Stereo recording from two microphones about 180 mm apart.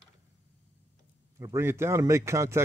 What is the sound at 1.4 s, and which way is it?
Speech, 15° right (ahead or behind).